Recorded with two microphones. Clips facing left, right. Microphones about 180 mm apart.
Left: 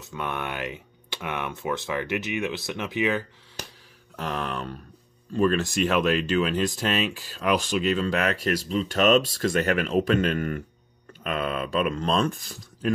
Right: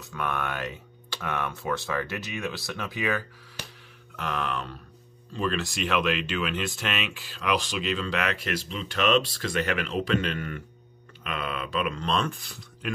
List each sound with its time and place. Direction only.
0.1 s speech: 20° left (ahead or behind)
4.2 s speech: 40° left (ahead or behind)